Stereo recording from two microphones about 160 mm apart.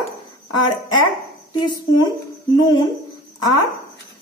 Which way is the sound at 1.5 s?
25° left (ahead or behind).